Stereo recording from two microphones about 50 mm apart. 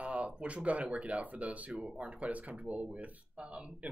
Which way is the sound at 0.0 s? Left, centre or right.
Right.